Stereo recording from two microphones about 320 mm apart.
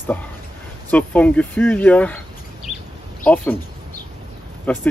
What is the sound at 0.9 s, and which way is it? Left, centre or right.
Speech, centre.